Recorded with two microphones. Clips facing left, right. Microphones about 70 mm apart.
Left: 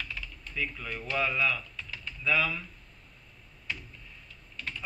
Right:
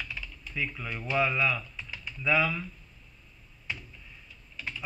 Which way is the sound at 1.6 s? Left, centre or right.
Centre.